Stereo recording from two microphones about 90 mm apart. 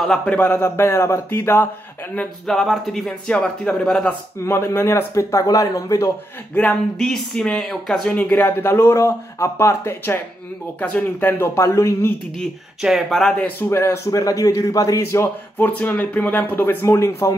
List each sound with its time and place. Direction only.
0.0 s speech: 5° left (ahead or behind)
0.6 s speech: 30° left (ahead or behind)
2.1 s speech: 5° left (ahead or behind)
4.4 s a man's voice: 30° left (ahead or behind)
6.5 s speech: 15° left (ahead or behind)
8.1 s speech: 15° left (ahead or behind)
12.4 s speech: centre (ahead or behind)
13.7 s a man's voice: 30° left (ahead or behind)
16.8 s a man's voice: 30° left (ahead or behind)